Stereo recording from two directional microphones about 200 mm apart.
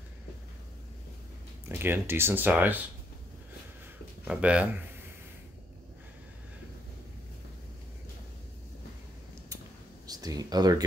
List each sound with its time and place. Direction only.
1.7 s speech: 10° right (ahead or behind)
4.2 s speech: 5° right (ahead or behind)
10.0 s speech: 20° right (ahead or behind)